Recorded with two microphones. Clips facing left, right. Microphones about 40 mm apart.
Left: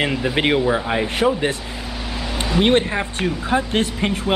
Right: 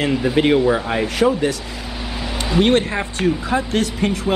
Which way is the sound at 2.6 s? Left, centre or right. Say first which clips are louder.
Even; centre.